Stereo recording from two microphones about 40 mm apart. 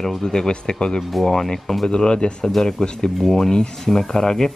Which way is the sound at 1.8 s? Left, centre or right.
Centre.